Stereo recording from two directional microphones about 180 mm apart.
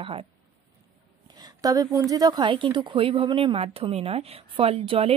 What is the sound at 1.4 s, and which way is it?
A woman's voice, 20° right (ahead or behind).